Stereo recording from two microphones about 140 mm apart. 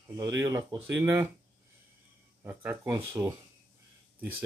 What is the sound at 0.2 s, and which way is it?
Speech, 25° right (ahead or behind).